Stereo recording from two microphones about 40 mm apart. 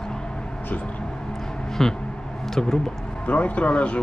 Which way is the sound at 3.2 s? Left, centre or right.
Left.